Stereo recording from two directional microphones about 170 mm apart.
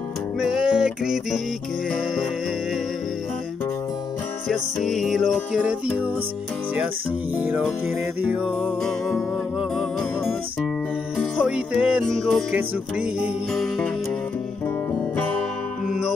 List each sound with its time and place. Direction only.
0.4 s music: 5° right (ahead or behind)
4.5 s music: centre (ahead or behind)
7.3 s music: 10° right (ahead or behind)
15.1 s music: 10° left (ahead or behind)